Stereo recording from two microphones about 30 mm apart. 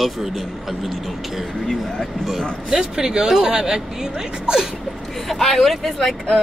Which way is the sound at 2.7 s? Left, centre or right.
Centre.